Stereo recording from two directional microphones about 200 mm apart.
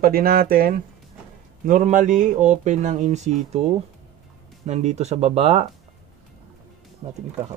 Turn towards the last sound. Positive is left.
turn(degrees=-30)  # may be behind; listen again after turning